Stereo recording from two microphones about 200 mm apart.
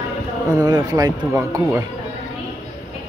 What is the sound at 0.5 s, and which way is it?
Speech, 20° right (ahead or behind).